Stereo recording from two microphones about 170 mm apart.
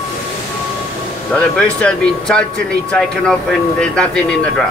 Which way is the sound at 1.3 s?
5° left (ahead or behind).